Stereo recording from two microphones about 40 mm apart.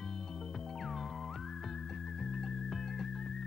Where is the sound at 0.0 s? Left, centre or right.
Centre.